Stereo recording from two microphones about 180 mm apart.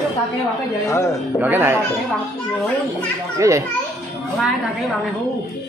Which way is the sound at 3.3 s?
15° right (ahead or behind).